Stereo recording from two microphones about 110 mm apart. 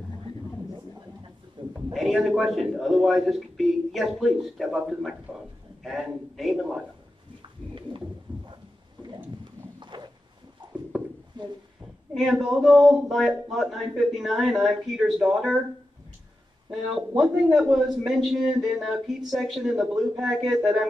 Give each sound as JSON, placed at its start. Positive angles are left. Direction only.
{"t": 1.6, "sound": "a sound", "side_deg": -45}
{"t": 2.0, "sound": "a man's voice", "side_deg": 0}
{"t": 9.8, "sound": "walk", "side_deg": -45}
{"t": 10.6, "sound": "a sound", "side_deg": -45}
{"t": 12.1, "sound": "a man's voice", "side_deg": 0}
{"t": 16.7, "sound": "a man's voice", "side_deg": -5}